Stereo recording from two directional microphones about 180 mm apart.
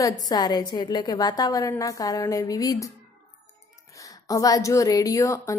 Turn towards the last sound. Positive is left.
turn(degrees=20)  # may be behind; listen again after turning